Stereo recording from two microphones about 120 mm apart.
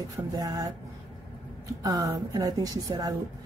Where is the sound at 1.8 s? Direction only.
30° right (ahead or behind).